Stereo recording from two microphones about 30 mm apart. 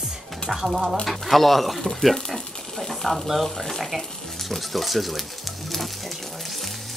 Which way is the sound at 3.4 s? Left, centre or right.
Centre.